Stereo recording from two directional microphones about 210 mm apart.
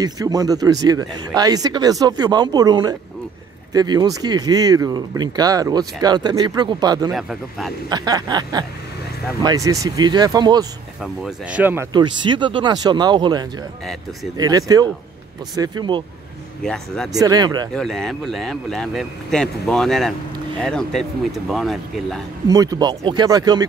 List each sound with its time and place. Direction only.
0.0 s speech: 15° right (ahead or behind)
7.1 s speech: centre (ahead or behind)
7.9 s speech: 20° right (ahead or behind)
11.0 s speech: 5° right (ahead or behind)
11.9 s speech: 20° right (ahead or behind)
16.6 s speech: centre (ahead or behind)
17.1 s speech: 15° right (ahead or behind)
17.7 s speech: centre (ahead or behind)
22.5 s speech: 15° right (ahead or behind)